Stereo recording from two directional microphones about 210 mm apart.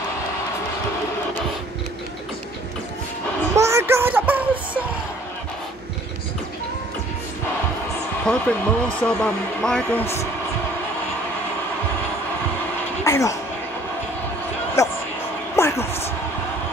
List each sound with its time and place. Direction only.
3.5 s music: 15° right (ahead or behind)
8.3 s a man's voice: 5° left (ahead or behind)
13.0 s speech: 15° left (ahead or behind)
14.8 s music: 15° left (ahead or behind)
15.5 s a sound: 10° left (ahead or behind)